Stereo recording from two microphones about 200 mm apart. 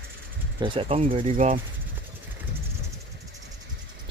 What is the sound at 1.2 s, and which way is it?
Speech, 40° right (ahead or behind).